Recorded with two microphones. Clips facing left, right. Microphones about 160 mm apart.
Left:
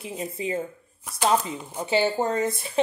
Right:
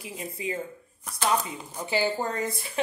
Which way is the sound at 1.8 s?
25° left (ahead or behind).